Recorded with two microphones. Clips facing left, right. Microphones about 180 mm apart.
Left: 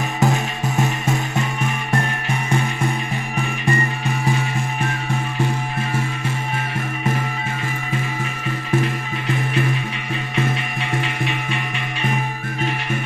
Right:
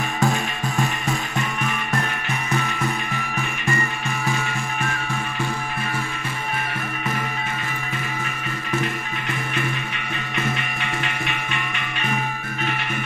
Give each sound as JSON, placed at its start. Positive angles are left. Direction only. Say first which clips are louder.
{"t": 0.2, "sound": "music", "louder": "left 3 dB", "side_deg": 20}